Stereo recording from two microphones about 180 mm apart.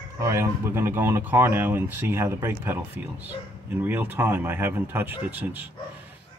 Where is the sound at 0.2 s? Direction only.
15° right (ahead or behind).